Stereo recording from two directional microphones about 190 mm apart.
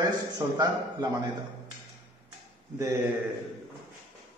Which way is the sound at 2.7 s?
15° right (ahead or behind).